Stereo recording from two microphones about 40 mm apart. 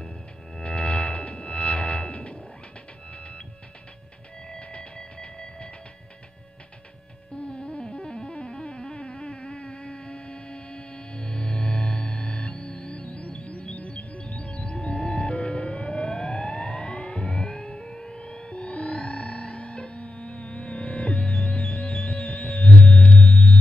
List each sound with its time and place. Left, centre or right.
0.6 s music: left
4.5 s music: left
7.4 s music: left